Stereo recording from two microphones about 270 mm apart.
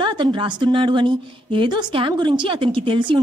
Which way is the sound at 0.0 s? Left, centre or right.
Centre.